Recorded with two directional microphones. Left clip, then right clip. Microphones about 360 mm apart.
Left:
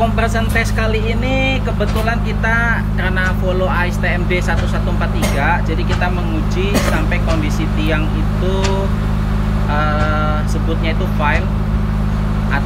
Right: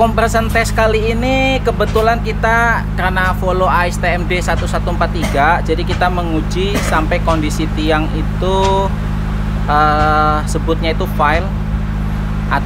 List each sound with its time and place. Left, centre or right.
0.0 s speech: centre
9.8 s speech: centre